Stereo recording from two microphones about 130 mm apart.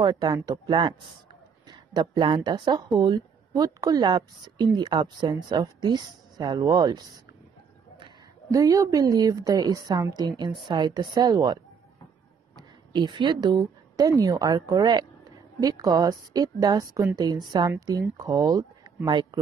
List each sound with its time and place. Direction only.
0.0 s a woman's voice: 30° right (ahead or behind)
8.5 s a woman's voice: 25° right (ahead or behind)
12.5 s a sound: 35° right (ahead or behind)
14.2 s a woman's voice: 30° right (ahead or behind)